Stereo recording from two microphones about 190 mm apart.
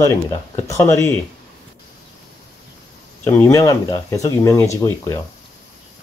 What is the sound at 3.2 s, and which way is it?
Speech, 15° left (ahead or behind).